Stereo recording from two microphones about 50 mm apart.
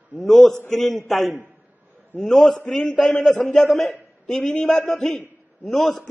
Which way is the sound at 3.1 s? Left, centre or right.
Centre.